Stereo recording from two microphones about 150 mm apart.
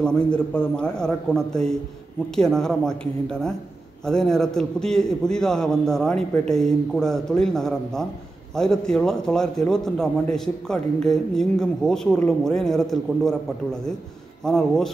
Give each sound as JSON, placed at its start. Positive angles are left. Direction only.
{"t": 0.0, "sound": "a man's voice", "side_deg": 5}